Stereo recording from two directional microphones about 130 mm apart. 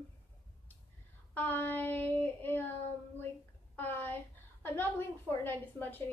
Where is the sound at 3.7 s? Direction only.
15° left (ahead or behind).